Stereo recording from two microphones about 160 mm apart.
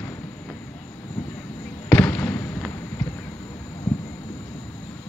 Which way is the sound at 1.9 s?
15° left (ahead or behind).